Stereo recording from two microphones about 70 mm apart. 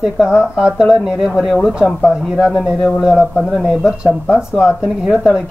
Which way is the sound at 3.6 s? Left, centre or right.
Centre.